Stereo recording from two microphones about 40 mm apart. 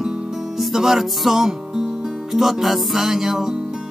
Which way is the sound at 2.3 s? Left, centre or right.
Centre.